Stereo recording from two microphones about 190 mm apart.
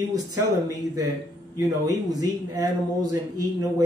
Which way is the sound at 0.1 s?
20° right (ahead or behind).